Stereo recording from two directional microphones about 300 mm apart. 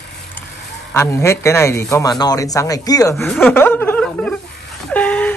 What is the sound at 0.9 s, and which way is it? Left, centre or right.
A man's voice, centre.